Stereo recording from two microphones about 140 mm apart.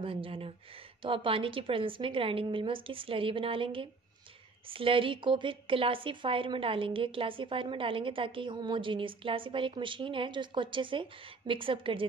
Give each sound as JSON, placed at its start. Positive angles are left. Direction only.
{"t": 0.0, "sound": "a woman's voice", "side_deg": -40}